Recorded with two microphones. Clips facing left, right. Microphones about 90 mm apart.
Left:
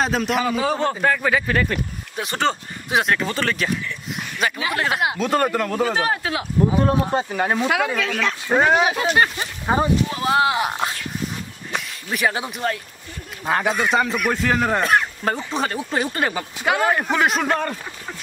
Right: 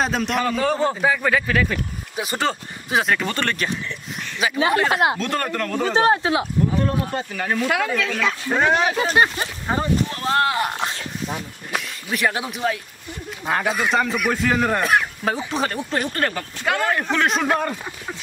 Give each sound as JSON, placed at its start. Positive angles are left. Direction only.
{"t": 0.0, "sound": "speech", "side_deg": 0}
{"t": 4.8, "sound": "speech", "side_deg": -35}
{"t": 5.2, "sound": "speech", "side_deg": 10}
{"t": 5.9, "sound": "speech", "side_deg": -25}
{"t": 6.8, "sound": "speech", "side_deg": 20}
{"t": 7.7, "sound": "speech", "side_deg": 10}
{"t": 8.5, "sound": "speech", "side_deg": 10}